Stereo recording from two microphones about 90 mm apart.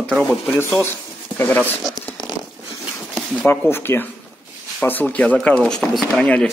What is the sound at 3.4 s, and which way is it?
Speech, 25° left (ahead or behind).